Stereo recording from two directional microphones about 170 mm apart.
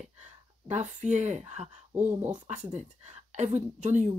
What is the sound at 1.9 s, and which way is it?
Speech, 10° right (ahead or behind).